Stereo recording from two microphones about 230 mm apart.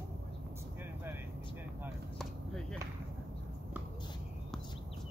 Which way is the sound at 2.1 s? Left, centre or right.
Centre.